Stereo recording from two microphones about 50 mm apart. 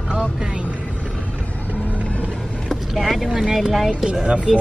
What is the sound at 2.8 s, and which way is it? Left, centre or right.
Speech, centre.